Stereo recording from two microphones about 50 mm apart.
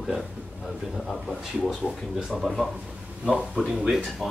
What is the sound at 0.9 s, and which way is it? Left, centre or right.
Speech, centre.